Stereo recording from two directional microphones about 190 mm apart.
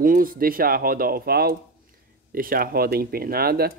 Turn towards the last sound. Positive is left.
turn(degrees=-55)  # may be behind; listen again after turning